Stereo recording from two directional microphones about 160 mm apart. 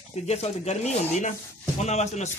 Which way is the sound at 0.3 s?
40° left (ahead or behind).